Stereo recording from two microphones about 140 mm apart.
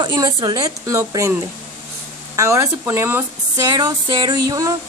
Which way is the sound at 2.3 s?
20° right (ahead or behind).